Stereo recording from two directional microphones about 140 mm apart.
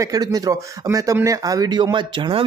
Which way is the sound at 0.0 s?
25° right (ahead or behind).